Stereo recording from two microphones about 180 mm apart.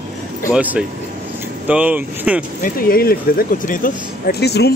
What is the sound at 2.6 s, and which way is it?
Speech, 55° left (ahead or behind).